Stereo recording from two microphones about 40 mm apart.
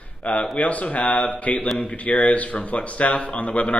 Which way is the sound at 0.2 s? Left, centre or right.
Left.